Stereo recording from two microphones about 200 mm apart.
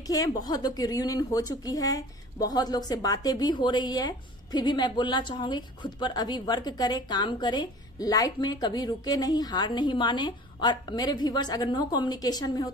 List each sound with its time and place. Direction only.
0.0 s a woman's voice: 15° left (ahead or behind)